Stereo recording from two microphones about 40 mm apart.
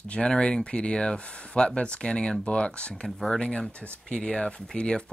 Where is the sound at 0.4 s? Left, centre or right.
Left.